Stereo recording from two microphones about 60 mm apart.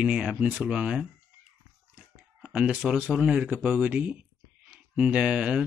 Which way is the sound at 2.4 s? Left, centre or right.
Right.